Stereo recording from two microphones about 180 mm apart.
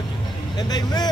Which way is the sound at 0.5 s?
25° left (ahead or behind).